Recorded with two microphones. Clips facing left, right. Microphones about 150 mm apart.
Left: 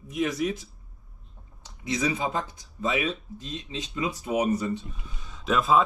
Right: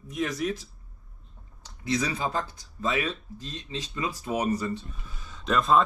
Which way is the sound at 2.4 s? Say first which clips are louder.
Left 1 dB; 25° left (ahead or behind).